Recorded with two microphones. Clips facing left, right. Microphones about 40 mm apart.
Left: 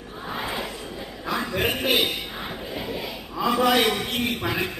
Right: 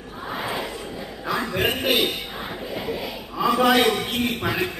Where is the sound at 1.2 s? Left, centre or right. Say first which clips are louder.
Right 2 dB; centre.